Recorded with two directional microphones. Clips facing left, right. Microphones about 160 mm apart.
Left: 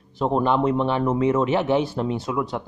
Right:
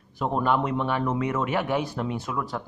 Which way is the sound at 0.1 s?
25° left (ahead or behind).